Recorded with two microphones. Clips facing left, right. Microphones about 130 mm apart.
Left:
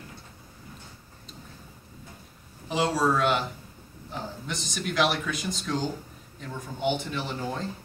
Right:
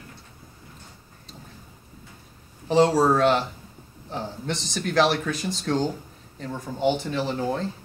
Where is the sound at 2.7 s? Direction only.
40° right (ahead or behind).